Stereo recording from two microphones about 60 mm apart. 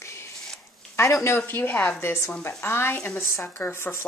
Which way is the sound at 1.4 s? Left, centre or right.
Left.